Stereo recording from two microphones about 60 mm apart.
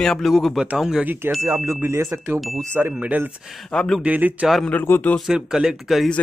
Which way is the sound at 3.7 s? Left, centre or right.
Centre.